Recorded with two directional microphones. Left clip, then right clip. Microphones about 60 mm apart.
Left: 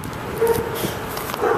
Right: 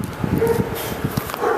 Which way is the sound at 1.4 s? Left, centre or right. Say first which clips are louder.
Even; right.